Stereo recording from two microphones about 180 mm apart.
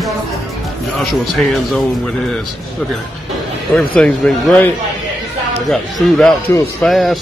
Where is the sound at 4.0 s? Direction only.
5° left (ahead or behind).